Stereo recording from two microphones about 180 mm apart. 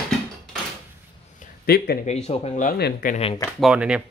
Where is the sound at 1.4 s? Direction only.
60° left (ahead or behind).